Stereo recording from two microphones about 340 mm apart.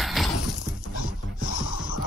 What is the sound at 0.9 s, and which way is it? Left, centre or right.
Dog, left.